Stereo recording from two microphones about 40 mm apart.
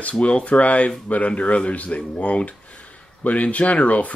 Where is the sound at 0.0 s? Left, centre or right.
Left.